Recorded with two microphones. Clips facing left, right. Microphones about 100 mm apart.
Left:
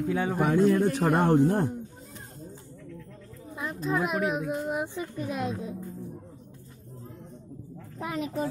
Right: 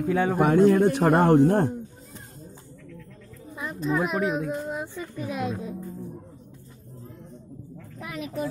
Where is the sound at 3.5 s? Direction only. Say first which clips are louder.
Right 2 dB; centre (ahead or behind).